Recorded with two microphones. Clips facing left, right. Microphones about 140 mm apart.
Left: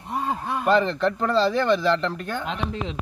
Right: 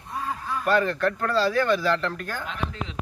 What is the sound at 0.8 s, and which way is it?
Speech, 25° left (ahead or behind).